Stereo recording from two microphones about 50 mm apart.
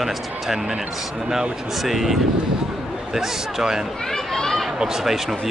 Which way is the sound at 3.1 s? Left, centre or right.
Centre.